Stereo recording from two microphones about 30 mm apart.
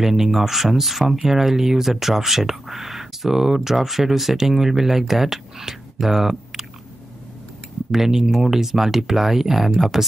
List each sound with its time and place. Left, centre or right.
0.0 s speech: centre
7.9 s speech: centre